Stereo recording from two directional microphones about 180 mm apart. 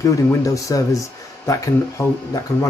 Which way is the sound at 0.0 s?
20° left (ahead or behind).